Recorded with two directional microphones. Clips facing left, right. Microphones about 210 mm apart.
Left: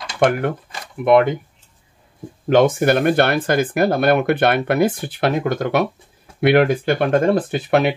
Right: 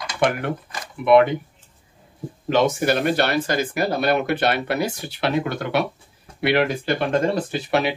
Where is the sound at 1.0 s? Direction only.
50° left (ahead or behind).